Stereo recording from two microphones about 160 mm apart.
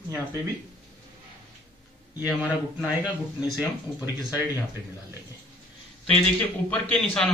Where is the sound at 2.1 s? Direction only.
10° right (ahead or behind).